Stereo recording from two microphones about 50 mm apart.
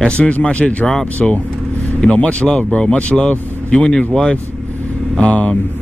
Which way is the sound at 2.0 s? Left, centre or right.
Left.